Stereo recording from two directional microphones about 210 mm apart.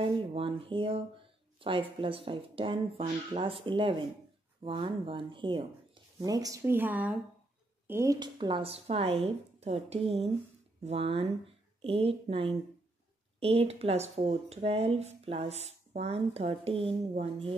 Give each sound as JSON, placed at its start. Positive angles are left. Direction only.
{"t": 0.0, "sound": "speech", "side_deg": -25}